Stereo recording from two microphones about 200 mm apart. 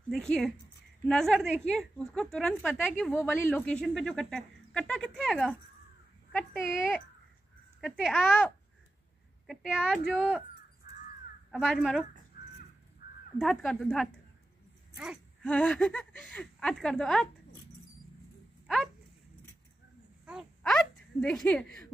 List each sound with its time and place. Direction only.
0.1 s speech: 5° left (ahead or behind)
11.5 s speech: centre (ahead or behind)
13.0 s caw: 50° left (ahead or behind)
13.4 s speech: centre (ahead or behind)
15.4 s speech: 5° left (ahead or behind)
20.2 s a sound: centre (ahead or behind)